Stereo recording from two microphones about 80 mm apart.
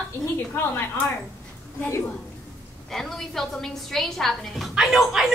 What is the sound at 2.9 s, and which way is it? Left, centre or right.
A woman's voice, centre.